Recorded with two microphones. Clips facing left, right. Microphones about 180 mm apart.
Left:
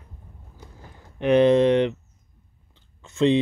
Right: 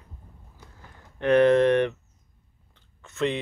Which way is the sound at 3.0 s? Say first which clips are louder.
Left 7 dB; 25° left (ahead or behind).